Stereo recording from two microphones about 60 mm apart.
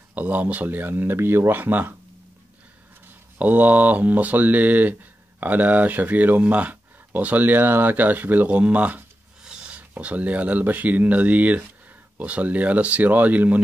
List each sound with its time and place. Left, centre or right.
0.1 s speech: right
3.3 s speech: right